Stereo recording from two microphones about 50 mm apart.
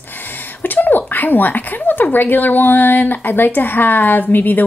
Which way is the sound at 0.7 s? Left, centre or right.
Left.